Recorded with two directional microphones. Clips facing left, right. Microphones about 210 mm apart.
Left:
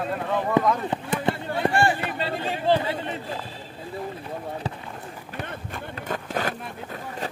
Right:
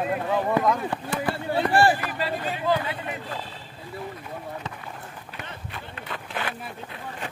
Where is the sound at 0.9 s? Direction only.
20° left (ahead or behind).